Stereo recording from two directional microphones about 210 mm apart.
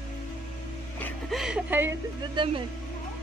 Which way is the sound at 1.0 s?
Centre (ahead or behind).